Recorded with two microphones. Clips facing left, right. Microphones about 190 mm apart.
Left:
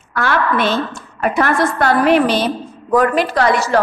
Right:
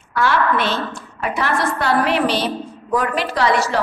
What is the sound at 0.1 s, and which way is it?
A woman's voice, 50° left (ahead or behind).